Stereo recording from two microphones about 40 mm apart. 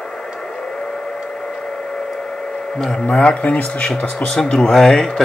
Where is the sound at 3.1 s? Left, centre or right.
Left.